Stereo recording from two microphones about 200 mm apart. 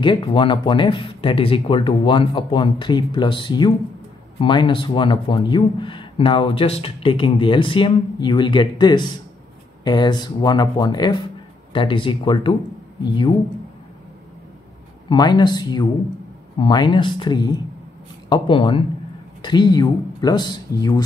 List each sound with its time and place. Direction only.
0.0 s speech: 25° left (ahead or behind)
15.0 s speech: 20° left (ahead or behind)